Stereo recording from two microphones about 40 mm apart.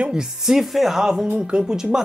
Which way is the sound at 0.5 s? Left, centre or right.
Centre.